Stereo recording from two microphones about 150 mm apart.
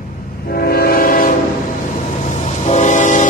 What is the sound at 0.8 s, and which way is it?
Train, 80° left.